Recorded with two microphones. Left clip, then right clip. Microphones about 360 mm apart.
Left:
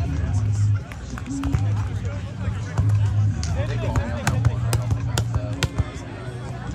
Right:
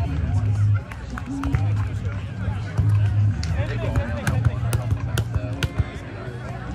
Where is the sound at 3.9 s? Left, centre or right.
Centre.